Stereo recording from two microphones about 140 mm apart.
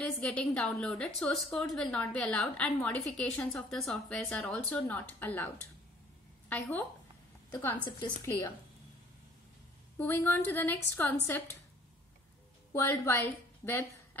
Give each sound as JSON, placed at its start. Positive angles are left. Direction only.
{"t": 0.0, "sound": "a woman's voice", "side_deg": 5}
{"t": 6.5, "sound": "a woman's voice", "side_deg": 10}
{"t": 9.9, "sound": "a woman's voice", "side_deg": 15}
{"t": 12.7, "sound": "a woman's voice", "side_deg": 15}